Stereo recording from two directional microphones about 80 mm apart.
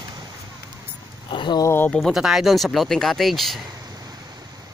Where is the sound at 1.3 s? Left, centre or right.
Left.